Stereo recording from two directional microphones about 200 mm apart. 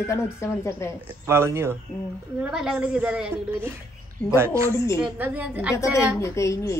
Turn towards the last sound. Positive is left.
turn(degrees=15)  # may be behind; listen again after turning